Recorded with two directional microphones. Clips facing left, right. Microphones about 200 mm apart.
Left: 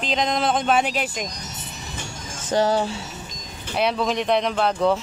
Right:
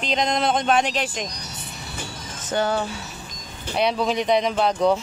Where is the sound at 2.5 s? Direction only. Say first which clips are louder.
Left 3 dB; 35° left (ahead or behind).